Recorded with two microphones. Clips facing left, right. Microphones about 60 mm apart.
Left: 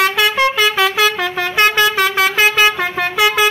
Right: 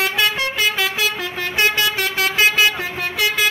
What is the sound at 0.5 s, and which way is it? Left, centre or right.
Vehicle, left.